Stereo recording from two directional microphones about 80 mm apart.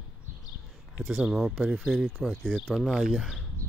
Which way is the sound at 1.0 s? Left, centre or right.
Centre.